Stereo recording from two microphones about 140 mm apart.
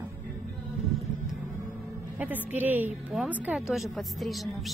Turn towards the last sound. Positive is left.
turn(degrees=0)  # may be behind; listen again after turning